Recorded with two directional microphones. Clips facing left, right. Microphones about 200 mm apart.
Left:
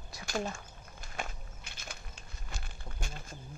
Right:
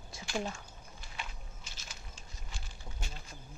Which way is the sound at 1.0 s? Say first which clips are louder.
Left 6 dB; 45° left (ahead or behind).